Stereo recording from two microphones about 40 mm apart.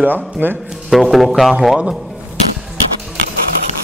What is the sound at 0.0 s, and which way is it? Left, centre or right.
Speech, right.